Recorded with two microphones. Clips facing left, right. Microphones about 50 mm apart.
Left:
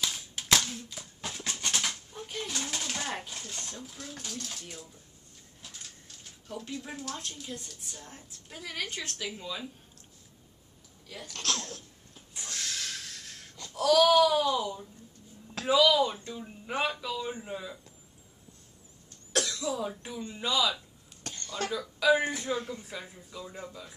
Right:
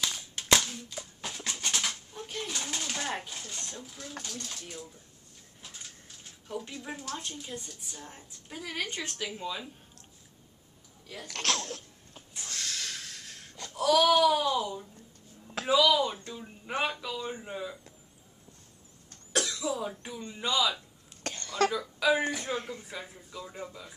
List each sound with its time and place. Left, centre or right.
0.0 s pant: centre
4.2 s speech: centre
11.2 s speech: right
12.4 s snort: centre
13.7 s baby cry: centre
14.1 s speech: centre
15.4 s a sound: centre
15.7 s speech: centre
19.3 s speech: centre
21.2 s a sound: right
21.6 s speech: centre